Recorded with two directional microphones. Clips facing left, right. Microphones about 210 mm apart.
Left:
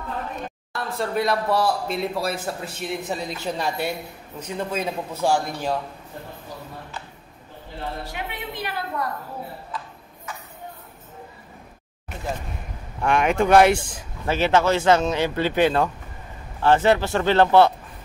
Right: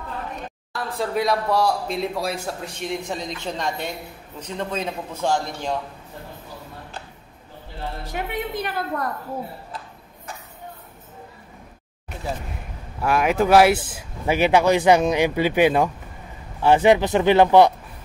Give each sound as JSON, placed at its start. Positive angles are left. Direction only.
{"t": 0.7, "sound": "a man's voice", "side_deg": 0}
{"t": 8.1, "sound": "a woman's voice", "side_deg": -45}
{"t": 13.0, "sound": "speech", "side_deg": -5}